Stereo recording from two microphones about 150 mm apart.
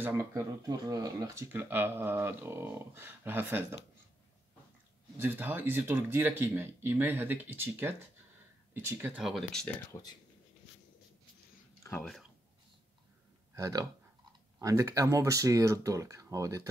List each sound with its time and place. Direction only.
0.2 s speech: 25° right (ahead or behind)
5.1 s speech: 15° right (ahead or behind)
9.2 s speech: centre (ahead or behind)
12.0 s speech: centre (ahead or behind)
13.6 s speech: 25° right (ahead or behind)